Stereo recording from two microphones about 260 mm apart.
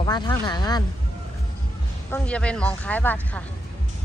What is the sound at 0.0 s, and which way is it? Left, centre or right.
Speech, centre.